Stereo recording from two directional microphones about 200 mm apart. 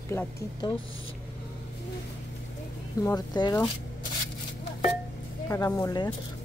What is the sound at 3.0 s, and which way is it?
Speech, 20° left (ahead or behind).